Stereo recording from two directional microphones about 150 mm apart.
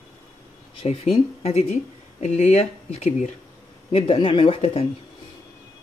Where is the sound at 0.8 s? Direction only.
40° left (ahead or behind).